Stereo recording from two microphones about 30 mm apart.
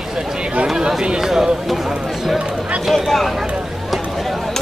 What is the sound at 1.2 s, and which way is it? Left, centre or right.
Speech, centre.